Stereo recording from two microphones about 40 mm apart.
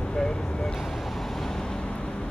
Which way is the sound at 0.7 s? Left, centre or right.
Centre.